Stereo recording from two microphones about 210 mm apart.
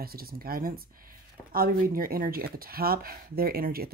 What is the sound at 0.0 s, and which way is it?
Speech, 45° right (ahead or behind).